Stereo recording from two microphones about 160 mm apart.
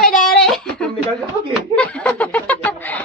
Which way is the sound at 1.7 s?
5° left (ahead or behind).